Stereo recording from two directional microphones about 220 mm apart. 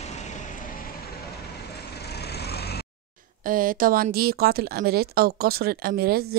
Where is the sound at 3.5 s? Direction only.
40° right (ahead or behind).